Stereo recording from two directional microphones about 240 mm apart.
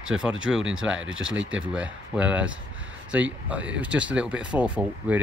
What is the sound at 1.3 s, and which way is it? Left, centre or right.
Speech, right.